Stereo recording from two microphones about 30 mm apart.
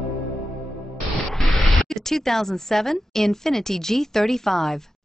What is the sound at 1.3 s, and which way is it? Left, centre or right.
Speech, centre.